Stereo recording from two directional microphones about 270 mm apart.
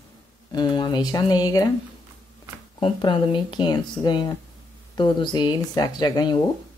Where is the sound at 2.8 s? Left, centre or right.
Centre.